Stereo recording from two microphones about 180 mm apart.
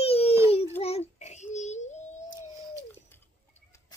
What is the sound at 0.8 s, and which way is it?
Child singing, 35° left (ahead or behind).